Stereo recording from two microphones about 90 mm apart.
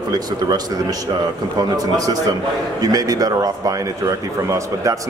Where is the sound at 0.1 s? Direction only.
45° right (ahead or behind).